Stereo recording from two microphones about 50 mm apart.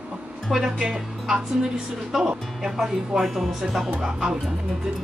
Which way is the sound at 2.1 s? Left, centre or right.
Centre.